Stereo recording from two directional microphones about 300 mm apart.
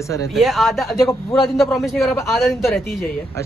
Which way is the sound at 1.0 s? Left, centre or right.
Centre.